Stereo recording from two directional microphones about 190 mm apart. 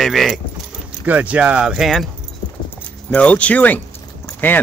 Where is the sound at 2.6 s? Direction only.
10° left (ahead or behind).